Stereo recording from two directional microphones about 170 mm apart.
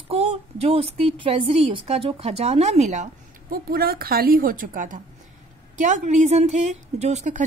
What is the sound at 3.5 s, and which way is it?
A woman's voice, 60° right (ahead or behind).